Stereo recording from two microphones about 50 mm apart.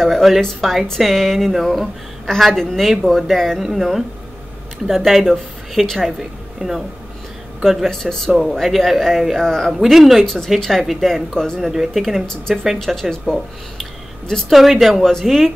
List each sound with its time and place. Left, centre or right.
0.0 s a sound: centre
0.6 s a woman's voice: centre
7.9 s a woman's voice: centre
9.7 s a woman's voice: centre
10.2 s a woman's voice: centre
11.7 s speech: centre
12.7 s speech: centre
13.3 s a sound: centre
14.5 s a woman's voice: centre